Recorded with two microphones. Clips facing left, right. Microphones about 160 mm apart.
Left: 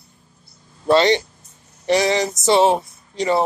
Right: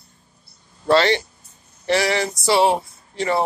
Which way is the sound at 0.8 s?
20° left (ahead or behind).